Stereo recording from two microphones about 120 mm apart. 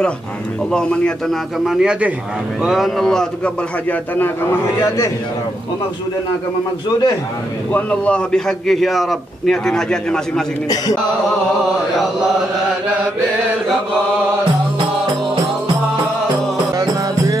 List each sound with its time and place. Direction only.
0.7 s speech: 5° left (ahead or behind)
1.6 s a man's voice: 5° right (ahead or behind)
4.2 s a man's voice: 20° left (ahead or behind)
7.7 s a man's voice: 10° left (ahead or behind)
16.7 s music: 25° right (ahead or behind)